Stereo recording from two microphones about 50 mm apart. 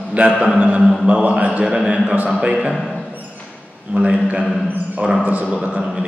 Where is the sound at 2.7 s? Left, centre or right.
Centre.